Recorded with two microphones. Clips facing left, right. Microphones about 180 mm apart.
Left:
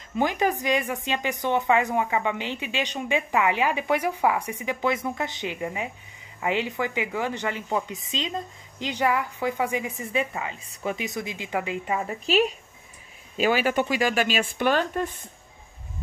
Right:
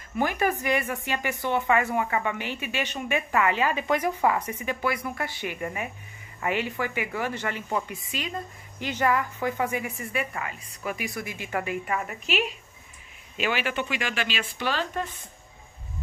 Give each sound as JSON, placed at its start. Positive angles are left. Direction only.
{"t": 0.2, "sound": "a woman's voice", "side_deg": 15}
{"t": 12.3, "sound": "speech", "side_deg": 40}